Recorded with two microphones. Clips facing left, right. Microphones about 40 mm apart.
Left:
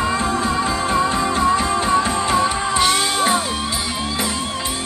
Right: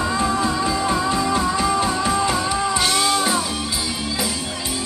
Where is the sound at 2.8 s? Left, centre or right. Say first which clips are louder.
Left 4 dB; centre.